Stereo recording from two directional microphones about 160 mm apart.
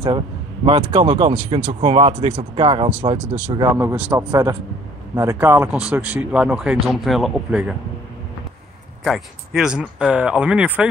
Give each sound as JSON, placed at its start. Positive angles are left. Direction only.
{"t": 0.7, "sound": "speech", "side_deg": -30}
{"t": 3.7, "sound": "a man's voice", "side_deg": -10}
{"t": 9.0, "sound": "speech", "side_deg": 0}